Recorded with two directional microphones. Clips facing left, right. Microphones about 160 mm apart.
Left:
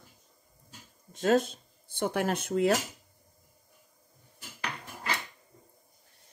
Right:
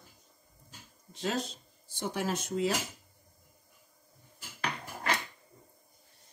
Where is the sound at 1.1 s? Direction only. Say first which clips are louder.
Left 9 dB; 50° left (ahead or behind).